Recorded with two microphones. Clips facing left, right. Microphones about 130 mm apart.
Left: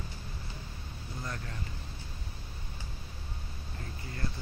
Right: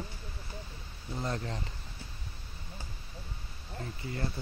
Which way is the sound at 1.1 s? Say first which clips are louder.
Right 6 dB; 25° right (ahead or behind).